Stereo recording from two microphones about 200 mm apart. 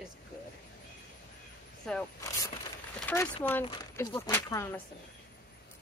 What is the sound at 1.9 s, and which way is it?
Speech, 5° left (ahead or behind).